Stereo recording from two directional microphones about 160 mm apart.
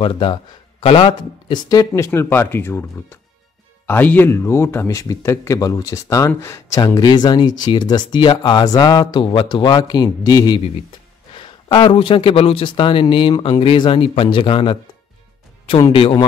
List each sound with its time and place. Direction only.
0.0 s speech: 30° left (ahead or behind)
15.9 s speech: 30° left (ahead or behind)